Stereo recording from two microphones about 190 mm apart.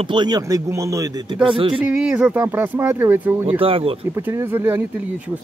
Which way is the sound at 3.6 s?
30° right (ahead or behind).